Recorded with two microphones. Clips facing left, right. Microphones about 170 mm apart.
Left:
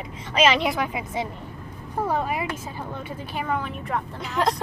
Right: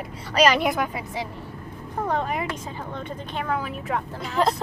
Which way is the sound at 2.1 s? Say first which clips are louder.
Right 1 dB; 5° left (ahead or behind).